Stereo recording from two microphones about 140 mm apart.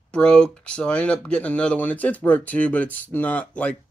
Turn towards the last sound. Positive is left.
turn(degrees=10)  # may be behind; listen again after turning